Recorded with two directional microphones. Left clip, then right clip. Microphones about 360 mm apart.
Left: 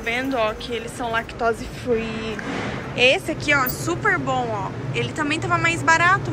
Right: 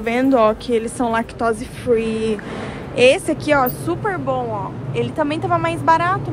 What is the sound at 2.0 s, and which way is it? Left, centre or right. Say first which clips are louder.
Vehicle: right 8 dB; centre.